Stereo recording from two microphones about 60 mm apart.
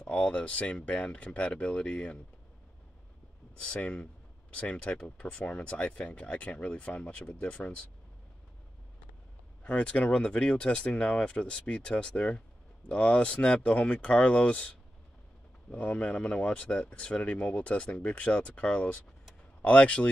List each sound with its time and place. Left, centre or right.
0.0 s speech: centre
3.6 s speech: left
9.6 s speech: left
15.7 s speech: left